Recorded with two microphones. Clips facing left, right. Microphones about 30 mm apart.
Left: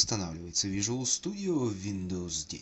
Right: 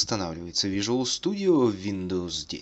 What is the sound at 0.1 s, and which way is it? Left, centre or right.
Speech, right.